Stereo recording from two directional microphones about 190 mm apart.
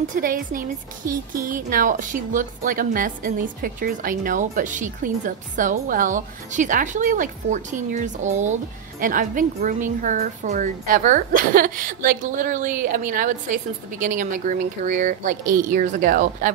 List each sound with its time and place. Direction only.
0.0 s speech: 45° right (ahead or behind)